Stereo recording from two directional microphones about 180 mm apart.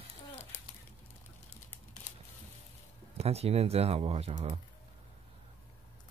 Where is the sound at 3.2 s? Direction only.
35° right (ahead or behind).